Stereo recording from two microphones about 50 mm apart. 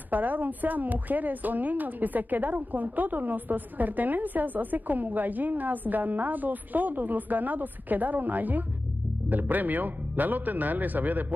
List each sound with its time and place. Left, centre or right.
0.1 s a woman's voice: right